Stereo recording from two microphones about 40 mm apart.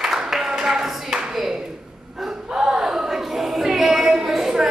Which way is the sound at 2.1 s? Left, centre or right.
Centre.